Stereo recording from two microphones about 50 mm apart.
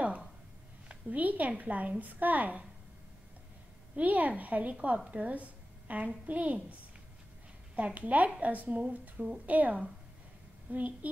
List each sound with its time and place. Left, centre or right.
0.8 s a woman's voice: right
3.9 s a woman's voice: right
7.7 s a woman's voice: right